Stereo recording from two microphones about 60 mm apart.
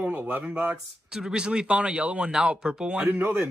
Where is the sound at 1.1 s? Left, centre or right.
Centre.